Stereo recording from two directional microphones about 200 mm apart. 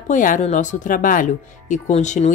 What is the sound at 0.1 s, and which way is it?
Speech, 40° left (ahead or behind).